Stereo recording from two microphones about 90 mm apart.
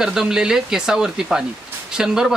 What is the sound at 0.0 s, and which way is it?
Speech, 5° right (ahead or behind).